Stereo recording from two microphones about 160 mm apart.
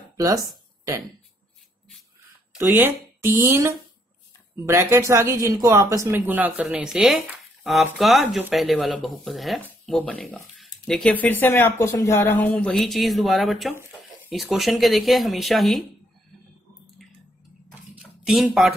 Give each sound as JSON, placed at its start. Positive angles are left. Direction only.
{"t": 0.2, "sound": "speech", "side_deg": -20}
{"t": 2.5, "sound": "speech", "side_deg": -10}
{"t": 12.4, "sound": "speech", "side_deg": 5}
{"t": 18.2, "sound": "speech", "side_deg": 0}